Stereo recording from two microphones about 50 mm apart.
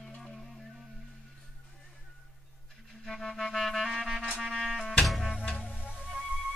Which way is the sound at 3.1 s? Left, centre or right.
Centre.